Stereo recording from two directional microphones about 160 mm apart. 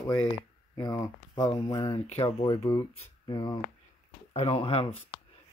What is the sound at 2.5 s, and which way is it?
Speech, 15° left (ahead or behind).